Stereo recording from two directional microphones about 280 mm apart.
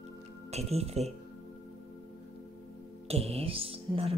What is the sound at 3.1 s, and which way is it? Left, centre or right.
Speech, right.